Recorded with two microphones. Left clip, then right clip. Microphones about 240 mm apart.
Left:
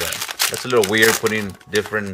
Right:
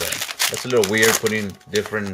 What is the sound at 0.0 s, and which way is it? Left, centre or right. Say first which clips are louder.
A man's voice: left 1 dB; centre.